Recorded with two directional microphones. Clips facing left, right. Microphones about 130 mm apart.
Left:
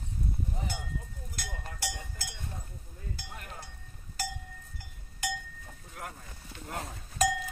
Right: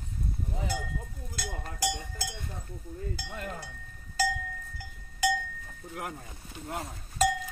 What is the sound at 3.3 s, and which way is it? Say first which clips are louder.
Chink: right 8 dB; 85° right.